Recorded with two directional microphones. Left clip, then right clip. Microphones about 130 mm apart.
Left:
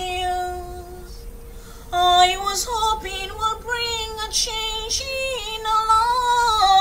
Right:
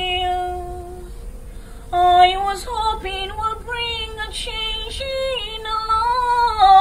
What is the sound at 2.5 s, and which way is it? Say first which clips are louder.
Child singing: even; 25° left (ahead or behind).